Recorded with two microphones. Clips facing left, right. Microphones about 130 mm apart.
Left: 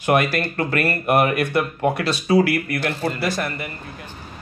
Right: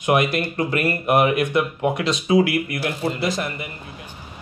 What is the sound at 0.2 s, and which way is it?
Speech, 15° right (ahead or behind).